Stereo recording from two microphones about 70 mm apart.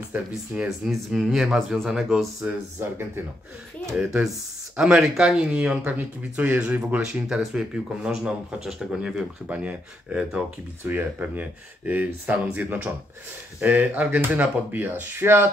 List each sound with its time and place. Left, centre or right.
0.7 s speech: centre
2.8 s speech: right
3.9 s speech: centre
5.4 s speech: centre
9.5 s speech: centre; by 15.4 s right